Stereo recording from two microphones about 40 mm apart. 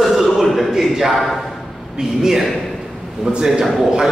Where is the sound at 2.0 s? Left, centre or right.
Centre.